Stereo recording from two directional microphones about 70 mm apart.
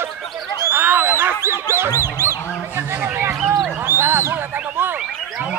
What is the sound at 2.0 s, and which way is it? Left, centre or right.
Honk, right.